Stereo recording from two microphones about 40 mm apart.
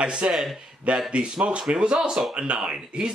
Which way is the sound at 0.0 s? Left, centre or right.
Right.